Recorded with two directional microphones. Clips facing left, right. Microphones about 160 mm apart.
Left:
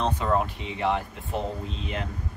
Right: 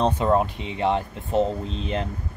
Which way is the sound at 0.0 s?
25° right (ahead or behind).